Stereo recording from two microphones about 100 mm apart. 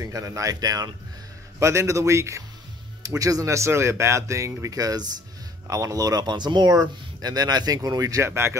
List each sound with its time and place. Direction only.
0.0 s speech: 35° right (ahead or behind)
8.3 s speech: 25° right (ahead or behind)